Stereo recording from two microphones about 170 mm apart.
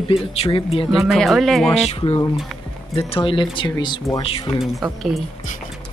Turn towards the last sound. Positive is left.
turn(degrees=0)  # may be behind; listen again after turning